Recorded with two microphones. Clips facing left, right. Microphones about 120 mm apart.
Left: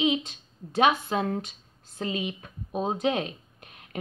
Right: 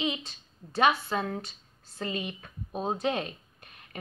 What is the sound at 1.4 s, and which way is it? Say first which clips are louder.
Speech: left 5 dB; 20° left (ahead or behind).